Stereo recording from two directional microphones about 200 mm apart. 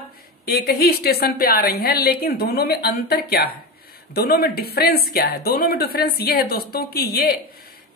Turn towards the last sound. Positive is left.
turn(degrees=50)  # may be behind; listen again after turning